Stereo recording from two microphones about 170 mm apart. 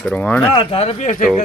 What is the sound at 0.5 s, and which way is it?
Speech, 35° left (ahead or behind).